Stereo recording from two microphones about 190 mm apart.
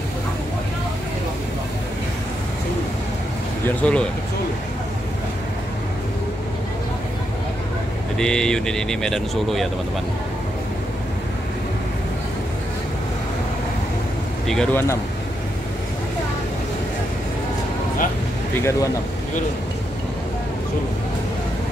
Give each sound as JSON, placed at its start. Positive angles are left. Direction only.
{"t": 3.6, "sound": "speech", "side_deg": 5}
{"t": 8.2, "sound": "speech", "side_deg": 5}
{"t": 14.5, "sound": "speech", "side_deg": 5}
{"t": 18.6, "sound": "speech", "side_deg": 15}